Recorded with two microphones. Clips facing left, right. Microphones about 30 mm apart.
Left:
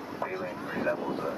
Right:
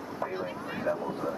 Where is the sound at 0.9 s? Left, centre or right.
Left.